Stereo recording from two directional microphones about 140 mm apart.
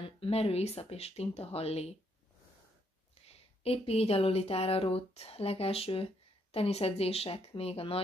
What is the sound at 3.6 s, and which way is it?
Speech, 45° left (ahead or behind).